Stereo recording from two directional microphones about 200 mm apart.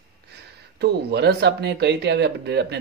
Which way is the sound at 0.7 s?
55° right (ahead or behind).